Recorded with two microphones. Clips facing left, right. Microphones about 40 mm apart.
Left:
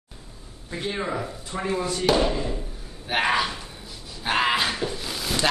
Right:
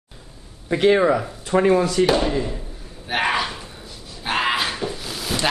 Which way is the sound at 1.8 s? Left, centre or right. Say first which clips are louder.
Right 9 dB; right.